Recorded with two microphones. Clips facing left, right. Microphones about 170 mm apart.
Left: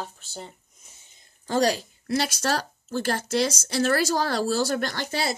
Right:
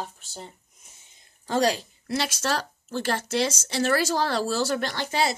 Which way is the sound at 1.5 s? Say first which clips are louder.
Left 1 dB; 40° left (ahead or behind).